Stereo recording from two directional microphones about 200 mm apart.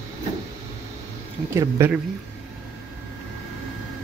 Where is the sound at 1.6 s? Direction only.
15° right (ahead or behind).